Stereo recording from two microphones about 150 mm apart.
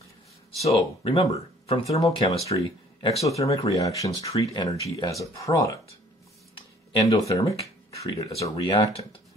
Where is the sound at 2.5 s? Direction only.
35° left (ahead or behind).